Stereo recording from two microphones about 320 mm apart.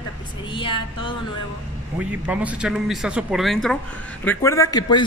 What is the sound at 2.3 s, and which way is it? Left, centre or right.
A man's voice, centre.